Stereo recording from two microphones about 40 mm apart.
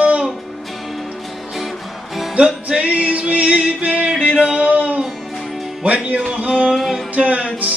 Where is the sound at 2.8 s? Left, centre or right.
Right.